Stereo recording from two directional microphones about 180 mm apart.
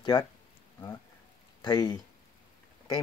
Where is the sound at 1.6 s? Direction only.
25° left (ahead or behind).